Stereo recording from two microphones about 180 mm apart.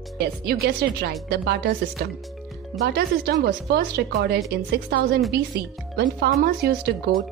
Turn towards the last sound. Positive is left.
turn(degrees=-60)  # may be behind; listen again after turning